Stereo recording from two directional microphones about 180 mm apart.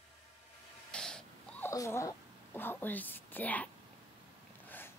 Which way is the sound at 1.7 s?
15° left (ahead or behind).